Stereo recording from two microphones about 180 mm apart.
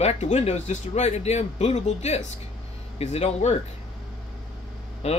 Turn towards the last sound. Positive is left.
turn(degrees=35)  # may be behind; listen again after turning